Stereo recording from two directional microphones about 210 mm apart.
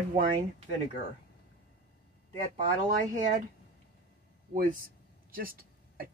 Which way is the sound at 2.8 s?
35° right (ahead or behind).